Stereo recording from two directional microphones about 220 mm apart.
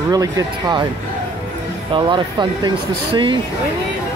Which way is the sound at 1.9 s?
20° right (ahead or behind).